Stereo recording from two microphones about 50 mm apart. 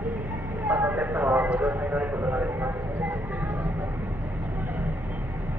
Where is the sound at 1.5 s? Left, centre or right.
Right.